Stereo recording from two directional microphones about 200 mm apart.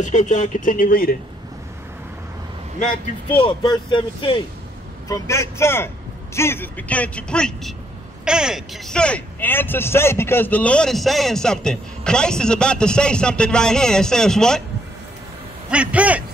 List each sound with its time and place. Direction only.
0.0 s speech: 35° left (ahead or behind)
3.3 s a man's voice: 25° left (ahead or behind); by 14.6 s 5° left (ahead or behind)
15.7 s a man's voice: 5° right (ahead or behind)